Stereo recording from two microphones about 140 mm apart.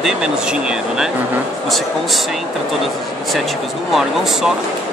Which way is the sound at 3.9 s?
Centre (ahead or behind).